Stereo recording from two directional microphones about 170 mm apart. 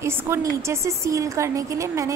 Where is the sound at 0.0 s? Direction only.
15° right (ahead or behind).